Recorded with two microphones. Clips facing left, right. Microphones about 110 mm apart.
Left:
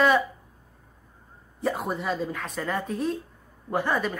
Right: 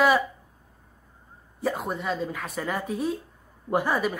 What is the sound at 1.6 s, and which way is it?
Speech, centre (ahead or behind).